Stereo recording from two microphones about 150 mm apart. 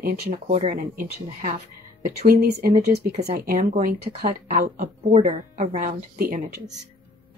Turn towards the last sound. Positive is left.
turn(degrees=-70)  # may be behind; listen again after turning